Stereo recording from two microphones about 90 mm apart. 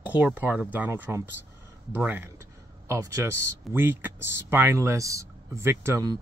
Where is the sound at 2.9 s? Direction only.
30° right (ahead or behind).